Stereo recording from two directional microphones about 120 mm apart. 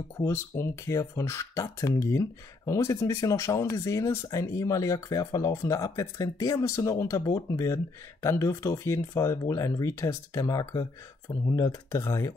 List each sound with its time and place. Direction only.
0.2 s speech: 20° left (ahead or behind)